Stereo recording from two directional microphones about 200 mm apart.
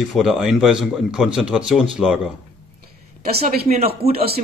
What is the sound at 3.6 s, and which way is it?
Speech, 30° right (ahead or behind).